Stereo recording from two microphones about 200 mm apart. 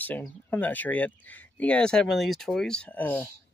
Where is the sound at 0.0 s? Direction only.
10° left (ahead or behind).